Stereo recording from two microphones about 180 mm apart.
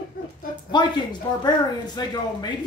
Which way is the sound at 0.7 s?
25° left (ahead or behind).